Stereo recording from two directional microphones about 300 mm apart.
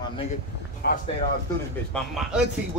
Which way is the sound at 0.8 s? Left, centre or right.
Left.